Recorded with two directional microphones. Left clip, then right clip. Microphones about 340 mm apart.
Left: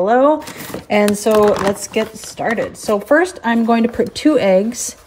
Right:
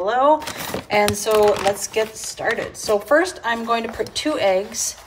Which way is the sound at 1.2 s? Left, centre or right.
Centre.